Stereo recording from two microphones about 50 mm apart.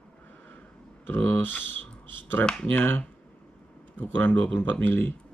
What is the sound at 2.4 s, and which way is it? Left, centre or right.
Speech, centre.